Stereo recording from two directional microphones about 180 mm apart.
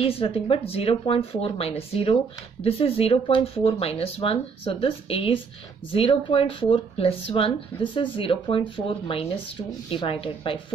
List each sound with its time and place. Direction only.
0.0 s speech: 30° left (ahead or behind)